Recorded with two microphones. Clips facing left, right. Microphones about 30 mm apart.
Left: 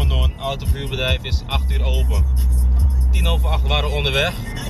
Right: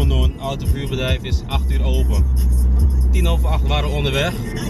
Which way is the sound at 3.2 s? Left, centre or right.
Centre.